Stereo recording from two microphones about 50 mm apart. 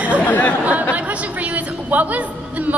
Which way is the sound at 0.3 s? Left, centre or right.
Left.